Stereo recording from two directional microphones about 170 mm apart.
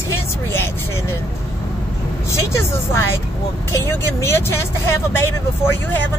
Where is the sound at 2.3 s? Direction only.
15° left (ahead or behind).